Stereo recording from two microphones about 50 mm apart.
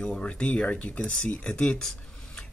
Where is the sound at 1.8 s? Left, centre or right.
Centre.